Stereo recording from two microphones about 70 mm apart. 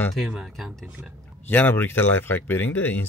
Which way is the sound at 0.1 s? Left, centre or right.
Centre.